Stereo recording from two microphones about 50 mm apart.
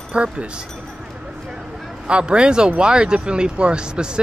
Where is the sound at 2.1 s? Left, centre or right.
Right.